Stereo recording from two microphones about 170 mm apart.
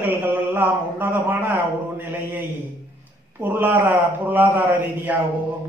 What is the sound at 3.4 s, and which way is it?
A man's voice, 10° right (ahead or behind).